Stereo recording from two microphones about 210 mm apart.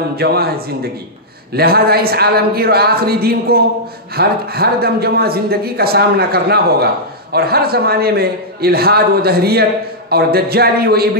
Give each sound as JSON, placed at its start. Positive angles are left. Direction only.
{"t": 0.1, "sound": "a man's voice", "side_deg": -50}
{"t": 1.5, "sound": "a man's voice", "side_deg": -50}